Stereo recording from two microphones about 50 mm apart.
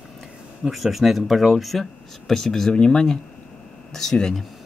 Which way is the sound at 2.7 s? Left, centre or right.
Centre.